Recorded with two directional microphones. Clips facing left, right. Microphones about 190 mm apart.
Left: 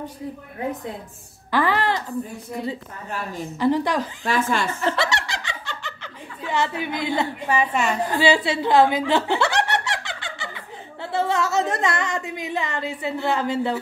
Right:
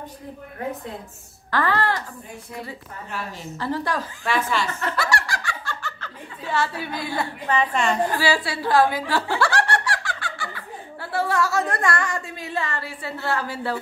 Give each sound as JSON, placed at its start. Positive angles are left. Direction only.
{"t": 1.5, "sound": "speech", "side_deg": 15}
{"t": 3.5, "sound": "speech", "side_deg": 15}
{"t": 4.3, "sound": "speech", "side_deg": 45}
{"t": 4.8, "sound": "snicker", "side_deg": 25}
{"t": 8.1, "sound": "speech", "side_deg": 20}